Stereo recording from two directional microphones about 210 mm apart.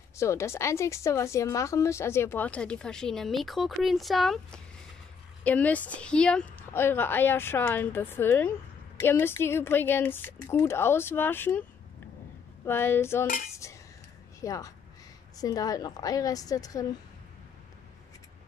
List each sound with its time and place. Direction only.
0.2 s speech: 15° left (ahead or behind)
12.6 s speech: 10° left (ahead or behind)
13.6 s cutlery: 15° left (ahead or behind)
14.4 s a woman's voice: 15° left (ahead or behind)